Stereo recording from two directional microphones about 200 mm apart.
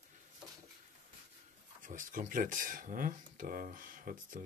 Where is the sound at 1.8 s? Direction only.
40° right (ahead or behind).